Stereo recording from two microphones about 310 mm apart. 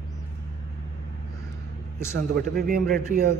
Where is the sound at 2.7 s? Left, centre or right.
Right.